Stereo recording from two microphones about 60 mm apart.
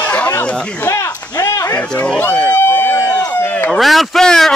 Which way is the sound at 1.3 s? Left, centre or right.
Left.